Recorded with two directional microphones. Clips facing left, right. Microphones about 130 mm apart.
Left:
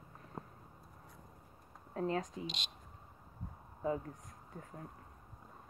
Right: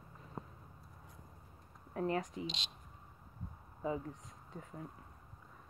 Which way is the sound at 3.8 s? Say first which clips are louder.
Left 2 dB; centre (ahead or behind).